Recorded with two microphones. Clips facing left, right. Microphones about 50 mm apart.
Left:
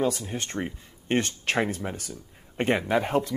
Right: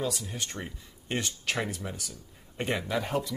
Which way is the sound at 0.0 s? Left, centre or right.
Left.